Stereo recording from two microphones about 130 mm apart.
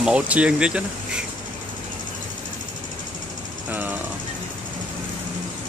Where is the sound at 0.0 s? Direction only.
10° right (ahead or behind).